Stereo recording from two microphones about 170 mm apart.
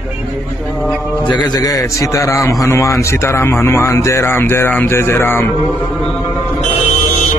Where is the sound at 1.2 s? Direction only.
20° left (ahead or behind).